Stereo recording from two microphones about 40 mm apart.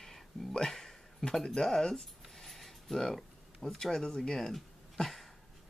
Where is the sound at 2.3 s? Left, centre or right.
Centre.